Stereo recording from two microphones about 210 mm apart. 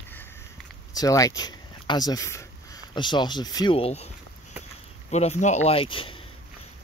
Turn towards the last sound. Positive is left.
turn(degrees=25)  # may be behind; listen again after turning